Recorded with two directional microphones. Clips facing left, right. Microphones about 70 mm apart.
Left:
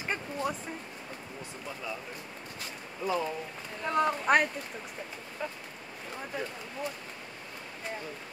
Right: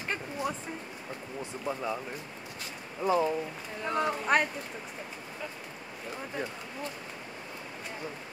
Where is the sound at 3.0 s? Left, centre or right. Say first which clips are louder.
Right 5 dB; right.